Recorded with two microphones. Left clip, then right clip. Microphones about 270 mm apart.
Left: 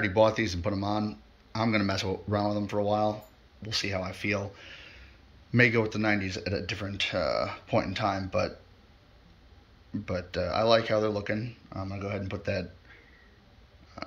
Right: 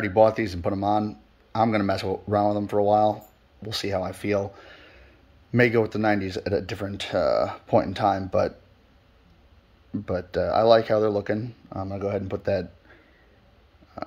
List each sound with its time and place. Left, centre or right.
0.0 s speech: centre
10.0 s speech: right